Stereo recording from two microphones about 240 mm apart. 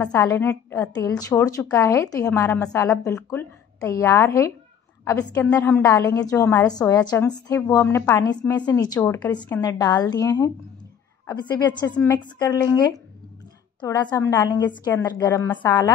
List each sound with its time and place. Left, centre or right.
0.0 s a woman's voice: centre